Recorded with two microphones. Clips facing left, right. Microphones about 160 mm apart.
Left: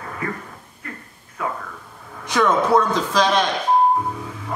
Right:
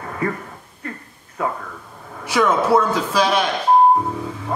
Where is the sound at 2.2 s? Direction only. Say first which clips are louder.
Right 1 dB; 10° right (ahead or behind).